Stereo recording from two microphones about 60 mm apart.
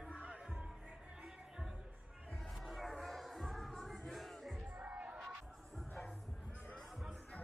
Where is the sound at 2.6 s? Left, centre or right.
Centre.